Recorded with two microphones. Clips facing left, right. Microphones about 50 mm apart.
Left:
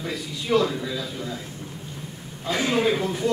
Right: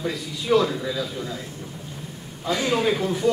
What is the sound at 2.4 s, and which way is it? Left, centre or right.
Speech, left.